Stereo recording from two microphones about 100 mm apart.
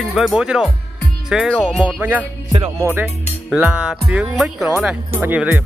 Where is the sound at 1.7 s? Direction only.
5° left (ahead or behind).